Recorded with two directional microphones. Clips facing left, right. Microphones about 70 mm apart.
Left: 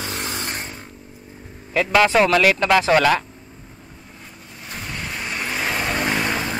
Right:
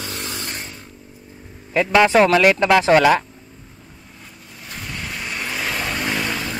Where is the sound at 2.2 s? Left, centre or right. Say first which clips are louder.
Right 2 dB; right.